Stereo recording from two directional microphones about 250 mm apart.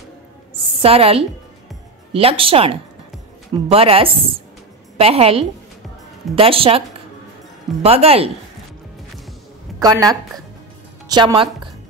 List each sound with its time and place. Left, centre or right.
0.7 s a woman's voice: right
7.8 s speech: right
9.8 s a woman's voice: centre